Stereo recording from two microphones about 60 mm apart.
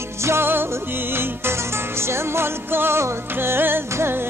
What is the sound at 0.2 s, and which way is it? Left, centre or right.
Music, right.